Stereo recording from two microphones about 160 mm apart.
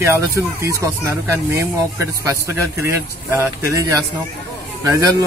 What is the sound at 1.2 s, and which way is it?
A man's voice, 15° right (ahead or behind).